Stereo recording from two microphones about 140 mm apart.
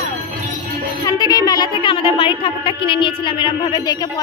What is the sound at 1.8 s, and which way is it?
A woman's voice, 35° left (ahead or behind).